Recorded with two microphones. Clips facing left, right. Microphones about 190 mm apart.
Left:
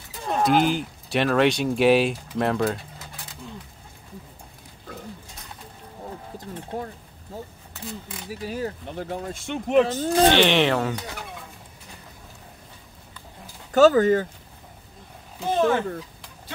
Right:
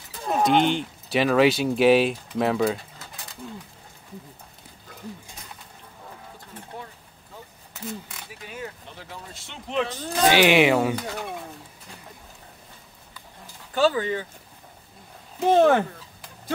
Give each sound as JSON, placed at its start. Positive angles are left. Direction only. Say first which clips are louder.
{"t": 0.3, "sound": "speech", "louder": "even", "side_deg": 0}
{"t": 6.3, "sound": "speech", "louder": "left 8 dB", "side_deg": 40}
{"t": 8.3, "sound": "speech", "louder": "left 9 dB", "side_deg": 35}
{"t": 10.3, "sound": "speech", "louder": "right 2 dB", "side_deg": -10}
{"t": 13.7, "sound": "speech", "louder": "left 7 dB", "side_deg": 45}
{"t": 15.5, "sound": "speech", "louder": "right 4 dB", "side_deg": -65}